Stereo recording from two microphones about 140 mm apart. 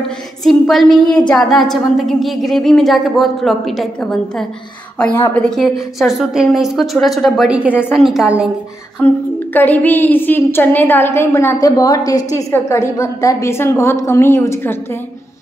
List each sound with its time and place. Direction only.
0.4 s a woman's voice: centre (ahead or behind)
9.0 s a woman's voice: 15° left (ahead or behind)